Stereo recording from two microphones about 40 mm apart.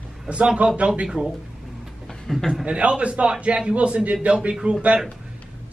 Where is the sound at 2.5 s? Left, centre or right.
Right.